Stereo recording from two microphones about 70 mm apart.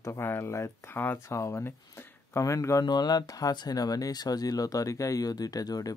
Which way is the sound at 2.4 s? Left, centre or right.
Left.